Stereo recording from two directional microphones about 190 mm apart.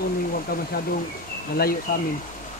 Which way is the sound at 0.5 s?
50° left (ahead or behind).